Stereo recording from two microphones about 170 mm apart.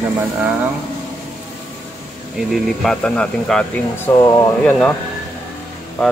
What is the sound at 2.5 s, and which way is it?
Speech, 5° left (ahead or behind).